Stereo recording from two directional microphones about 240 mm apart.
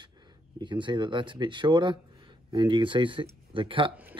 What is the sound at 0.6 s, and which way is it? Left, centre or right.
Speech, centre.